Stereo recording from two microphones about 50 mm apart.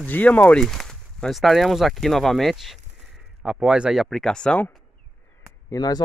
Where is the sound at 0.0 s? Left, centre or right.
Left.